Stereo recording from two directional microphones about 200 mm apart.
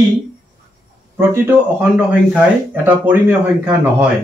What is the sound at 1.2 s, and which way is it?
Speech, 10° right (ahead or behind).